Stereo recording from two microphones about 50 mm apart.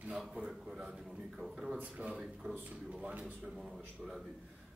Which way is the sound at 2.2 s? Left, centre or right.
Centre.